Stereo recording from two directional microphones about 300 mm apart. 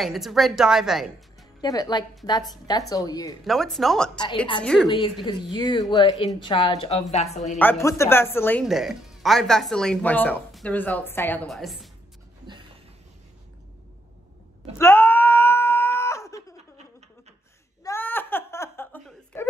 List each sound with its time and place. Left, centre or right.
0.0 s speech: centre
1.6 s speech: centre
3.4 s speech: centre
4.8 s speech: centre
7.5 s speech: centre
14.8 s wail: centre
17.8 s a sound: centre